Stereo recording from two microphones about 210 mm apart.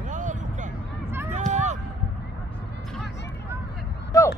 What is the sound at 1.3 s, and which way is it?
Run, 35° right (ahead or behind).